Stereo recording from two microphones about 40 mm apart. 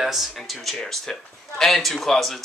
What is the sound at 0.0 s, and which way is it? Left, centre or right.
A woman's voice, centre.